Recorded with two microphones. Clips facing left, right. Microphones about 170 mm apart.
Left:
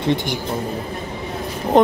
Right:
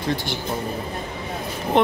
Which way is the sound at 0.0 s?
25° left (ahead or behind).